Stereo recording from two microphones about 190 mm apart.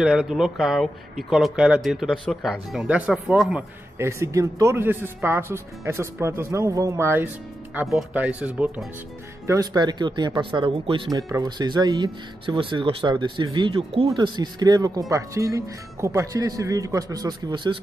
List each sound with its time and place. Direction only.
0.0 s a man's voice: 5° right (ahead or behind)
9.5 s speech: 20° right (ahead or behind)